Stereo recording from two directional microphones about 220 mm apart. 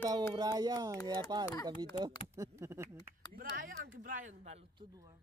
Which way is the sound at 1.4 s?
15° left (ahead or behind).